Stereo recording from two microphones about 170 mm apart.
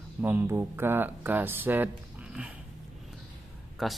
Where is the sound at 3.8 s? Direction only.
Centre (ahead or behind).